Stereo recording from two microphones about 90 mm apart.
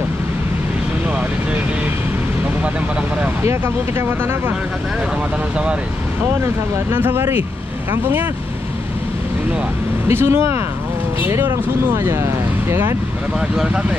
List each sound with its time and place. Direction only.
3.4 s speech: 30° right (ahead or behind)
6.9 s speech: 25° right (ahead or behind)
10.0 s speech: 30° right (ahead or behind)